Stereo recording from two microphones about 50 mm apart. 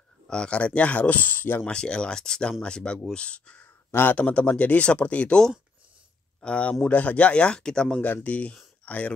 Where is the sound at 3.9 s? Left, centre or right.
Left.